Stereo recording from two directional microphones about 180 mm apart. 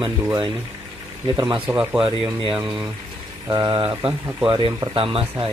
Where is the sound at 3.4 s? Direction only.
20° right (ahead or behind).